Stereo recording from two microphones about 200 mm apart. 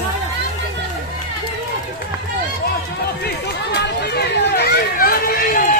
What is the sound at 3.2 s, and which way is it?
Run, 55° left (ahead or behind).